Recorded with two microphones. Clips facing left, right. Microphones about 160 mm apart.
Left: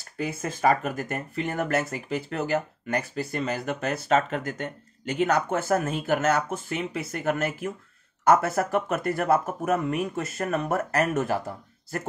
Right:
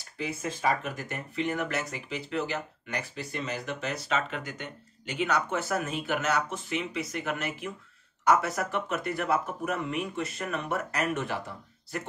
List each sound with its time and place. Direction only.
0.2 s speech: 55° left (ahead or behind)